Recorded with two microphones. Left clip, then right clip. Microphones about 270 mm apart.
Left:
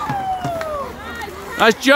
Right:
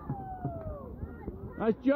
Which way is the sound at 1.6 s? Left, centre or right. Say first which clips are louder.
Left 16 dB; centre.